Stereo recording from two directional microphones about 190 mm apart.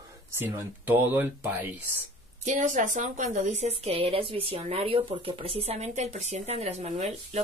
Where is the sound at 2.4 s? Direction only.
40° right (ahead or behind).